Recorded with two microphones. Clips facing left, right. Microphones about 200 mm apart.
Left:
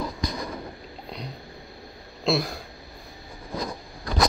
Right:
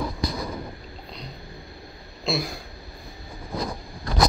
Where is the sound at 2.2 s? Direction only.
Centre (ahead or behind).